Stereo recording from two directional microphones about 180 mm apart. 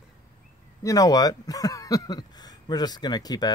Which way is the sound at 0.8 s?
20° left (ahead or behind).